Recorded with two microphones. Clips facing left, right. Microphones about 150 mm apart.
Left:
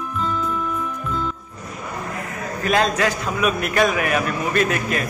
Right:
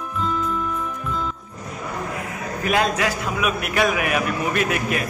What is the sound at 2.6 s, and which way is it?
A man's voice, 10° right (ahead or behind).